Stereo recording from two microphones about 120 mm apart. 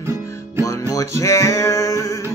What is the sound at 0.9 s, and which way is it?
Music, 25° left (ahead or behind).